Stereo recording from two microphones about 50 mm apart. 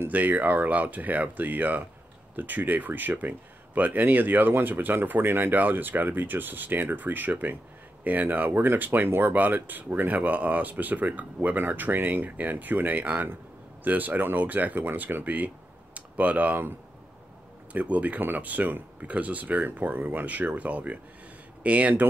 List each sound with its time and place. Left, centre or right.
0.1 s speech: right
17.7 s speech: right